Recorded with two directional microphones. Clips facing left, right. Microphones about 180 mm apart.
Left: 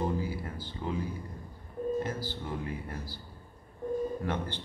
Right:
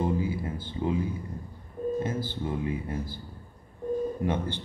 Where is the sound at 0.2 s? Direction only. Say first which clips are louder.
Right 5 dB; 20° right (ahead or behind).